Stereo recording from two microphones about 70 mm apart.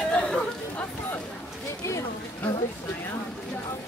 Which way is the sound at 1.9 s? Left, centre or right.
Left.